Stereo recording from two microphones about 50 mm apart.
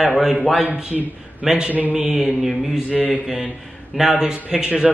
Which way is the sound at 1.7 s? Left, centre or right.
Right.